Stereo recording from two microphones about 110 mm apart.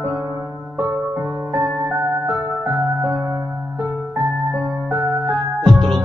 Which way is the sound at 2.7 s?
20° right (ahead or behind).